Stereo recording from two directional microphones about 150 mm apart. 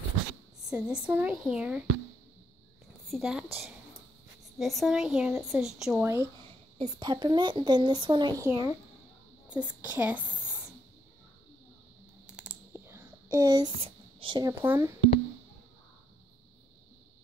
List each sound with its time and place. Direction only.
0.7 s a woman's voice: 5° right (ahead or behind)
3.1 s a woman's voice: 5° right (ahead or behind)
4.6 s a woman's voice: centre (ahead or behind)
6.0 s a woman's voice: 15° right (ahead or behind)
7.0 s a woman's voice: 30° right (ahead or behind); by 10.2 s 10° right (ahead or behind)
12.3 s computer keyboard: 10° right (ahead or behind)
13.7 s speech: 35° right (ahead or behind)
14.5 s a woman's voice: 15° right (ahead or behind)